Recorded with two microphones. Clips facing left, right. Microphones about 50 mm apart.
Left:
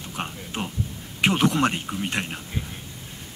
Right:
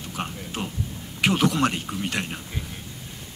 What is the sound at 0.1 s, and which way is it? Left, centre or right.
Speech, left.